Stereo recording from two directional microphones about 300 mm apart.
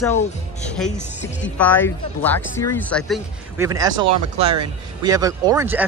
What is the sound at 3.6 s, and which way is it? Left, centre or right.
Speech, centre.